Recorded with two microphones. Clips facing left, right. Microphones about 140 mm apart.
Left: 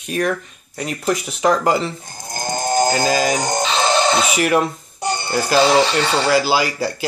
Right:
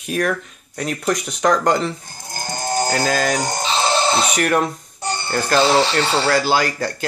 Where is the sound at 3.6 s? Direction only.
35° right (ahead or behind).